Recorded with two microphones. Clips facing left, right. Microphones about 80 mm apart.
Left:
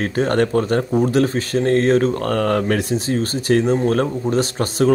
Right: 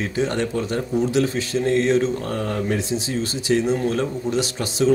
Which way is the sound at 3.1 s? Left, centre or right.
Left.